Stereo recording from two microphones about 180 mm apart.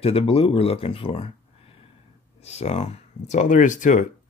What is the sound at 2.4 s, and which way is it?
Speech, 35° left (ahead or behind).